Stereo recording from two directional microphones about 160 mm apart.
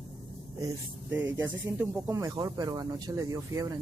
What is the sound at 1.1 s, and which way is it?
Speech, 10° right (ahead or behind).